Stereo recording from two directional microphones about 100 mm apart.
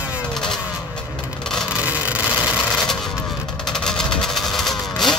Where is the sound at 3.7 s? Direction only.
5° left (ahead or behind).